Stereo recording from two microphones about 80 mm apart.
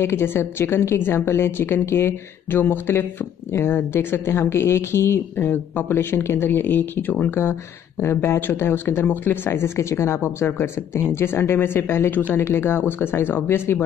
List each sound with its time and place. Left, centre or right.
0.0 s a woman's voice: left